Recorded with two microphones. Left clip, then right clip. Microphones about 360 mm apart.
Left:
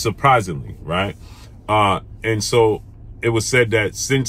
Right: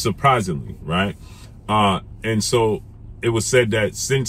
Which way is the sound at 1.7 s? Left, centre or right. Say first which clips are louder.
Left 2 dB; centre.